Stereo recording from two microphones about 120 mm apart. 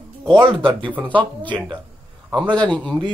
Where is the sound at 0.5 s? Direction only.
45° right (ahead or behind).